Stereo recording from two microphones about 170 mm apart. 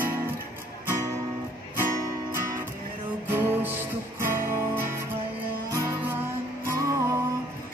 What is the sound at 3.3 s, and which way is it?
Music, 10° right (ahead or behind).